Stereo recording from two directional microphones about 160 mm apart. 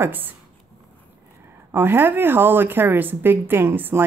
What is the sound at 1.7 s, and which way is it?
A woman's voice, 15° right (ahead or behind).